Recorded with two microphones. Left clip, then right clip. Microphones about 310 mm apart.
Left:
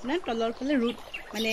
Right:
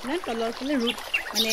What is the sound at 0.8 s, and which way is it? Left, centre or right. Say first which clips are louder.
Speech: right 5 dB; right.